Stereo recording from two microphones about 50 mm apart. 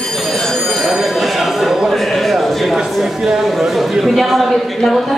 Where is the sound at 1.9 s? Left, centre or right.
Centre.